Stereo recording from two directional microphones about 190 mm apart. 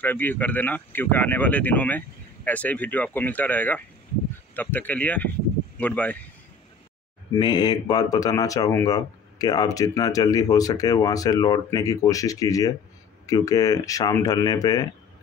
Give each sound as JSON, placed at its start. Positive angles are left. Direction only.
{"t": 0.0, "sound": "speech", "side_deg": 10}
{"t": 7.3, "sound": "speech", "side_deg": 20}